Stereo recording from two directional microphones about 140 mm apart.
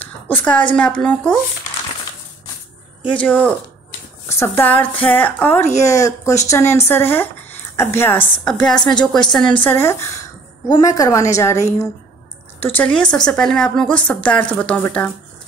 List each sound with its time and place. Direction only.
0.0 s a sound: 10° left (ahead or behind)
0.7 s a woman's voice: 5° left (ahead or behind)
3.2 s a woman's voice: 10° left (ahead or behind)
8.5 s a woman's voice: 5° left (ahead or behind); by 11.5 s 20° left (ahead or behind)
12.5 s a woman's voice: 15° left (ahead or behind)